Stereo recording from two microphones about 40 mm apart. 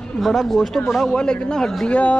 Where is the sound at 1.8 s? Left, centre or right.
Left.